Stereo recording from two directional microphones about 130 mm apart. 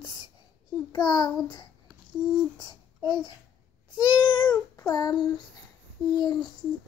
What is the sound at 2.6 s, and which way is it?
Speech, 35° left (ahead or behind).